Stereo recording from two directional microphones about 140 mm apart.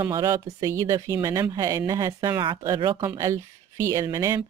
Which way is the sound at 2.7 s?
35° right (ahead or behind).